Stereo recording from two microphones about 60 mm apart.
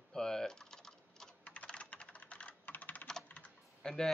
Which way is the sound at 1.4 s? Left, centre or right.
Left.